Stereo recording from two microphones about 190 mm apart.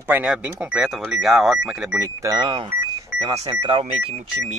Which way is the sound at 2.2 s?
25° right (ahead or behind).